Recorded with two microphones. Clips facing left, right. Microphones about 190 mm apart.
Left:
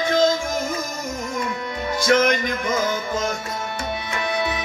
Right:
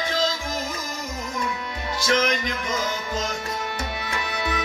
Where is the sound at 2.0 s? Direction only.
50° left (ahead or behind).